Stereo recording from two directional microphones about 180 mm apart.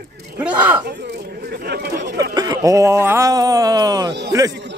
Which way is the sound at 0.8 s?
65° right (ahead or behind).